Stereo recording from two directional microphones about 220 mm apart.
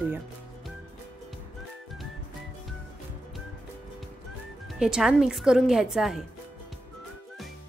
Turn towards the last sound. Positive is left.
turn(degrees=0)  # may be behind; listen again after turning